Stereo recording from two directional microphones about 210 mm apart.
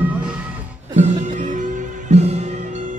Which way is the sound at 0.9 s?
35° right (ahead or behind).